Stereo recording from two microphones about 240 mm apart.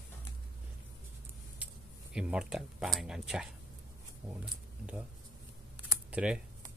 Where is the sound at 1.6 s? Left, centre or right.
Centre.